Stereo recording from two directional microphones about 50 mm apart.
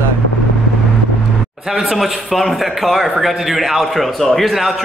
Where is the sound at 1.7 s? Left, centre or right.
Centre.